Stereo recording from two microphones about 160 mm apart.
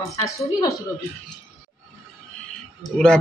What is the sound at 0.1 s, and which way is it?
Speech, 20° left (ahead or behind).